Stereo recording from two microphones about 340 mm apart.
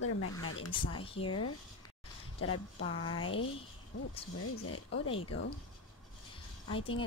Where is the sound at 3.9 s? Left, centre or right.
Left.